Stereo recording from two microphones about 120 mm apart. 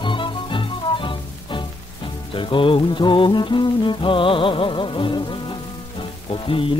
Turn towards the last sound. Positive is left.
turn(degrees=45)  # may be behind; listen again after turning